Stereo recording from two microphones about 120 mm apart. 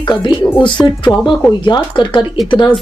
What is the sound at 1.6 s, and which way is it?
Speech, 40° left (ahead or behind).